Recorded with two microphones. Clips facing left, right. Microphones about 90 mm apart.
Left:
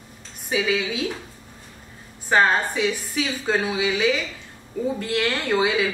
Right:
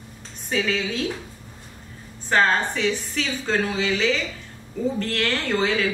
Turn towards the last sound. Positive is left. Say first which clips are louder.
# left 2 dB
turn(degrees=10)  # may be behind; listen again after turning